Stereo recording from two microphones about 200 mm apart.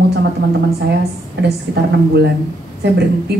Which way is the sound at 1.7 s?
60° right (ahead or behind).